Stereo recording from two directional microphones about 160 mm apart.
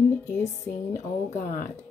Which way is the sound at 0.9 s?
45° left (ahead or behind).